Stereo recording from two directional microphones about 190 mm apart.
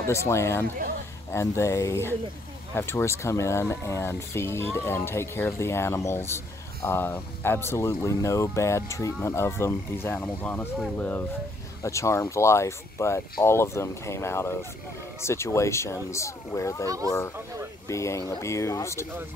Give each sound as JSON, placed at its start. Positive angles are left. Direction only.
{"t": 0.0, "sound": "speech", "side_deg": 15}
{"t": 16.8, "sound": "speech", "side_deg": -15}
{"t": 17.8, "sound": "speech", "side_deg": 15}